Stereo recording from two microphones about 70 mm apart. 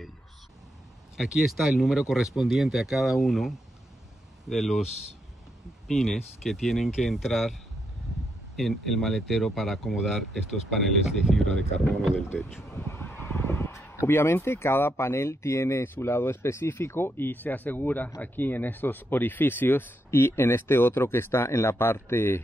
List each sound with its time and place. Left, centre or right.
1.1 s speech: centre
5.9 s speech: centre
8.5 s speech: centre
12.0 s speech: centre
12.7 s fowl: left
14.0 s speech: left